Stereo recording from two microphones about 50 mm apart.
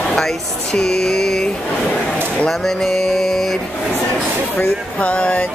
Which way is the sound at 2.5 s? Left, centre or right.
Centre.